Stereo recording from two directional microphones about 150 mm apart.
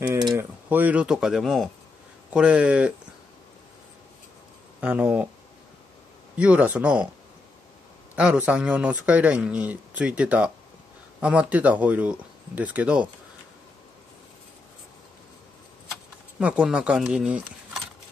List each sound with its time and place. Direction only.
0.0 s a sound: 20° right (ahead or behind)
0.4 s speech: 10° right (ahead or behind)
4.7 s speech: 10° right (ahead or behind)
6.3 s speech: 10° right (ahead or behind)
8.2 s speech: 10° right (ahead or behind)
16.3 s speech: 10° right (ahead or behind)